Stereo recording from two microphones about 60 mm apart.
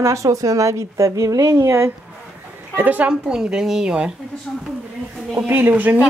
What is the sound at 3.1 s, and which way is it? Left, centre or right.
A woman's voice, centre.